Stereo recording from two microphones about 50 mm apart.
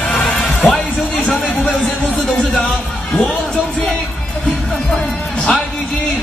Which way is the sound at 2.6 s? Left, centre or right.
Centre.